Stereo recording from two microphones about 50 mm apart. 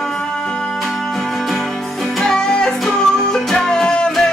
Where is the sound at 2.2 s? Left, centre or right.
Centre.